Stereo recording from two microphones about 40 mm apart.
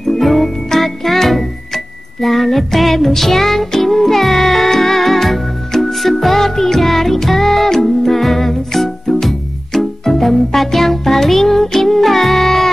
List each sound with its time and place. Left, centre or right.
0.0 s music: centre